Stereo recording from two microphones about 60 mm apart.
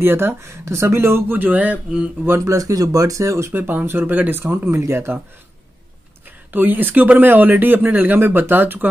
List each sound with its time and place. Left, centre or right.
0.0 s speech: right
2.4 s speech: right
3.5 s speech: right
4.5 s speech: right
6.2 s speech: right